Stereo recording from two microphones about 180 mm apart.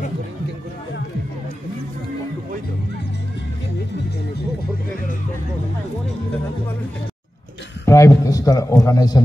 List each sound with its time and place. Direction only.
7.8 s a man's voice: 15° left (ahead or behind)